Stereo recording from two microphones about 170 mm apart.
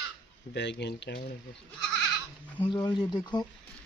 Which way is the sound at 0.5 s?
90° left.